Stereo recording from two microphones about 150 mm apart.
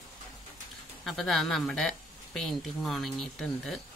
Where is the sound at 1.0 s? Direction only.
Centre (ahead or behind).